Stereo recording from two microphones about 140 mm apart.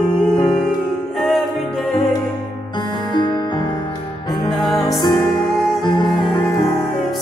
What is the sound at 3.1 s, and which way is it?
Music, 30° left (ahead or behind).